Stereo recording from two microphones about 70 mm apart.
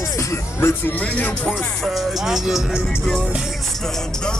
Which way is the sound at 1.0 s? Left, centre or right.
Left.